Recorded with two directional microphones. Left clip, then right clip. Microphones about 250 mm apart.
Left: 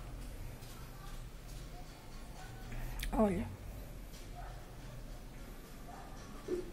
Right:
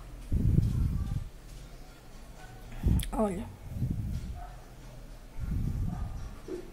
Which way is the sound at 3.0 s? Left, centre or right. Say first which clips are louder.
Right 1 dB; centre.